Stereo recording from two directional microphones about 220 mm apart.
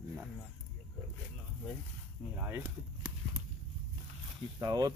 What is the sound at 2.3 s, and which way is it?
Speech, 10° right (ahead or behind).